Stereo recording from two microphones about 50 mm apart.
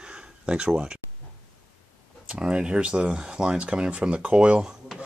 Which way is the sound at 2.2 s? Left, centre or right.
Centre.